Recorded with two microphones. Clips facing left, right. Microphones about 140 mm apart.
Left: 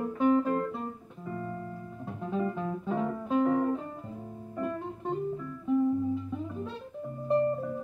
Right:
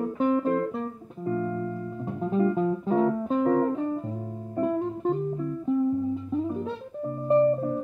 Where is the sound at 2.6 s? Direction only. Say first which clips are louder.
Right 8 dB; 45° right (ahead or behind).